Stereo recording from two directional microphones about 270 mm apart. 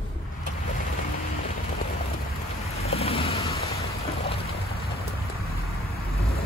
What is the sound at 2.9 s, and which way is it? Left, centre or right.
Vehicle, left.